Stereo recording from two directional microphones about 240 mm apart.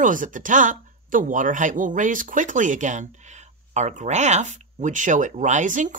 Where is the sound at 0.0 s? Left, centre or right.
Right.